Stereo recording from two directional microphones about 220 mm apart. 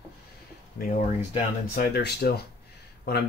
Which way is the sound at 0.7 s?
35° left (ahead or behind).